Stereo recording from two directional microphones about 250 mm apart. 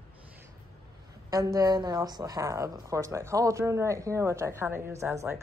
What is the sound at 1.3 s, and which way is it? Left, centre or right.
A woman's voice, centre.